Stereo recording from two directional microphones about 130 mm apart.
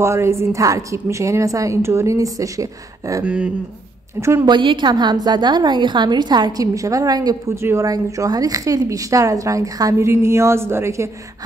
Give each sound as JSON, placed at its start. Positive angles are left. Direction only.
{"t": 0.0, "sound": "a woman's voice", "side_deg": -20}
{"t": 3.3, "sound": "speech", "side_deg": -10}
{"t": 4.2, "sound": "a woman's voice", "side_deg": -20}
{"t": 4.5, "sound": "a woman's voice", "side_deg": -40}